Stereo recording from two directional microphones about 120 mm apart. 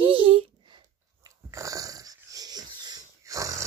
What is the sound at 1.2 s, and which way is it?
Dog, 30° right (ahead or behind).